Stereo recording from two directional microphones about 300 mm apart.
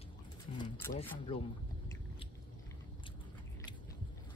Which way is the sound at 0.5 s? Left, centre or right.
Centre.